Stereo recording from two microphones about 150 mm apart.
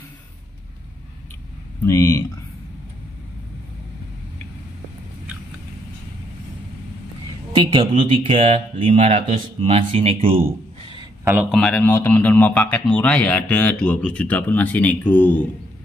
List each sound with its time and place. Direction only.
1.9 s speech: 20° left (ahead or behind)
7.5 s speech: 35° right (ahead or behind)
11.5 s speech: 5° left (ahead or behind)